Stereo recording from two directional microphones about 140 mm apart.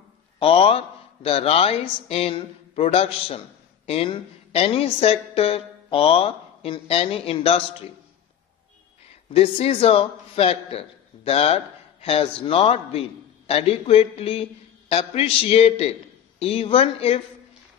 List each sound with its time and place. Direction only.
0.4 s a woman's voice: 40° left (ahead or behind)
9.3 s a woman's voice: 45° left (ahead or behind)